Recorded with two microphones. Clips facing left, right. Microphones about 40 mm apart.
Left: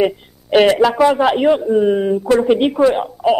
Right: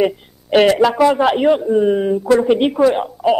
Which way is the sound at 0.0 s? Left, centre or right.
Centre.